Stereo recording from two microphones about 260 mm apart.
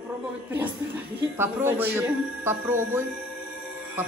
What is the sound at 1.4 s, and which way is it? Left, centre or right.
Speech, centre.